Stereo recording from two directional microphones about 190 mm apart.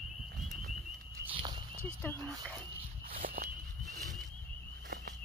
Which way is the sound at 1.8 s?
10° left (ahead or behind).